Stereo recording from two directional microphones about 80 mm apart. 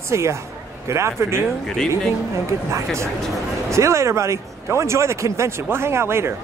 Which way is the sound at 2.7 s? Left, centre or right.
Right.